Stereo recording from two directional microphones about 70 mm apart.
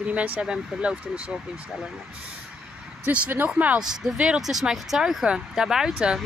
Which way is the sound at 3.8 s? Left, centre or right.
Centre.